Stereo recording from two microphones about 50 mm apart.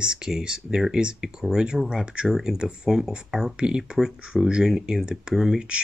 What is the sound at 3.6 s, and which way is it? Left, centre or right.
Speech, centre.